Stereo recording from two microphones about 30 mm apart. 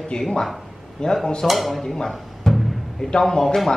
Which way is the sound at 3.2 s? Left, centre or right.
Centre.